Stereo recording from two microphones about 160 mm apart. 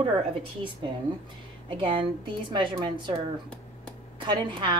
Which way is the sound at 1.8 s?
30° right (ahead or behind).